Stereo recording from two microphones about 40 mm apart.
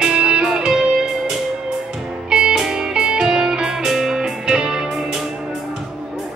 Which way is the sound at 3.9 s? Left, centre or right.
Centre.